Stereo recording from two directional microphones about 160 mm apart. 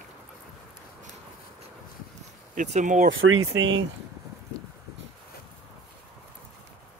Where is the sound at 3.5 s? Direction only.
90° right.